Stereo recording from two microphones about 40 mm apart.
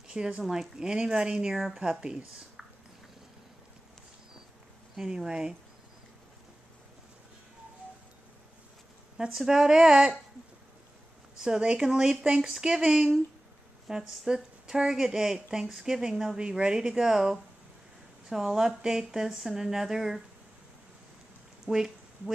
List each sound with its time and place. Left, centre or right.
0.4 s a woman's voice: centre
4.9 s speech: centre
9.3 s a woman's voice: centre
11.3 s a woman's voice: centre
12.8 s a woman's voice: right
16.3 s a woman's voice: right
19.2 s speech: centre
19.5 s a woman's voice: centre
21.7 s speech: centre